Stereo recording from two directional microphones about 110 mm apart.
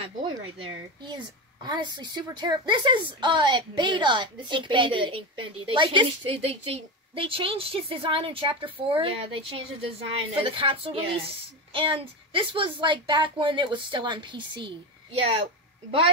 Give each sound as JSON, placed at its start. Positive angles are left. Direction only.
{"t": 0.0, "sound": "a woman's voice", "side_deg": -55}